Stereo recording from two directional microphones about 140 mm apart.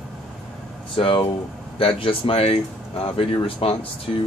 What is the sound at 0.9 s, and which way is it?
Speech, 40° left (ahead or behind).